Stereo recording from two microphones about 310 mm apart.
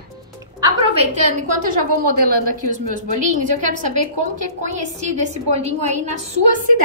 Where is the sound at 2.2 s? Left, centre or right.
Right.